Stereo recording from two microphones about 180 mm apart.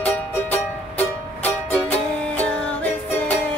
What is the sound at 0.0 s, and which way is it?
Music, 10° left (ahead or behind).